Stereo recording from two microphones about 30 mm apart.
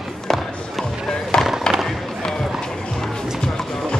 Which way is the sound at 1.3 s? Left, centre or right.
Left.